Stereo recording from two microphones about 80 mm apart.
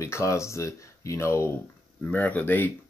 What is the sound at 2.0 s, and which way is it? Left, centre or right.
Speech, centre.